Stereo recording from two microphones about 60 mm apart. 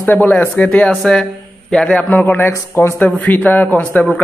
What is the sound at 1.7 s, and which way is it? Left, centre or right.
A man's voice, left.